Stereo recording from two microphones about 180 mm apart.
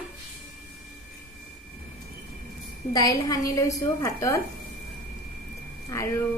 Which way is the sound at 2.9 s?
20° left (ahead or behind).